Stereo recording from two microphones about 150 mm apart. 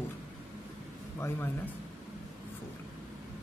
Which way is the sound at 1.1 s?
15° left (ahead or behind).